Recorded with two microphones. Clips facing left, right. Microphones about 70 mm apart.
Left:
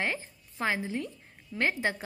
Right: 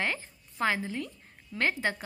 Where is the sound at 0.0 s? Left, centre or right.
Left.